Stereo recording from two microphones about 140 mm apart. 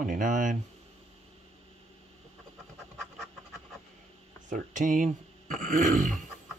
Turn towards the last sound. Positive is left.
turn(degrees=-70)  # may be behind; listen again after turning